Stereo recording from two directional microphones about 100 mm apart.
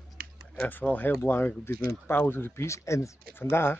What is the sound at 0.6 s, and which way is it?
A man's voice, 15° left (ahead or behind).